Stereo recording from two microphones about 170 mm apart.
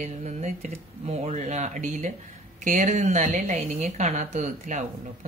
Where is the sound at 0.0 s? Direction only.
40° right (ahead or behind).